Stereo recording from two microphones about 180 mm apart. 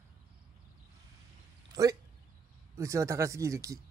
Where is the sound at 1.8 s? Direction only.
20° right (ahead or behind).